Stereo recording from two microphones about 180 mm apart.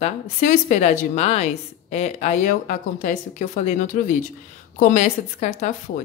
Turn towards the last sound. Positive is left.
turn(degrees=40)  # may be behind; listen again after turning